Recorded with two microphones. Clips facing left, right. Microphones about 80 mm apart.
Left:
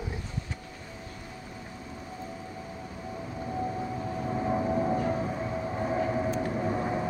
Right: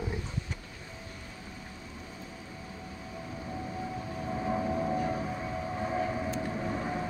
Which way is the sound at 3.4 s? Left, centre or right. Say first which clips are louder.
Left 6 dB; left.